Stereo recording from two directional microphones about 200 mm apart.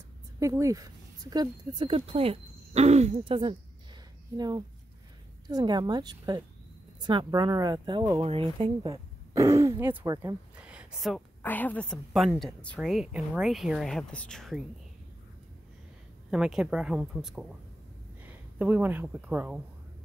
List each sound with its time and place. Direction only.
0.4 s speech: 15° right (ahead or behind)
10.5 s a sound: 5° right (ahead or behind)
11.4 s a woman's voice: 10° left (ahead or behind)
16.3 s a woman's voice: 5° right (ahead or behind)